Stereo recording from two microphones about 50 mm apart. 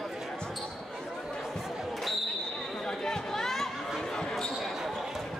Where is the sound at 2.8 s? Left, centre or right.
Centre.